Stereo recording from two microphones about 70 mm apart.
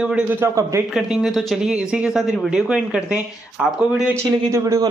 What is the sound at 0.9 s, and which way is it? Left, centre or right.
Speech, centre.